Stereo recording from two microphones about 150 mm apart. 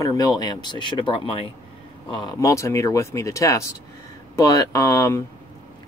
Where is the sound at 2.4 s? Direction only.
20° left (ahead or behind).